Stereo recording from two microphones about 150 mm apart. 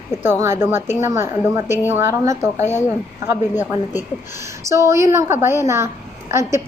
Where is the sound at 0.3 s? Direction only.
15° right (ahead or behind).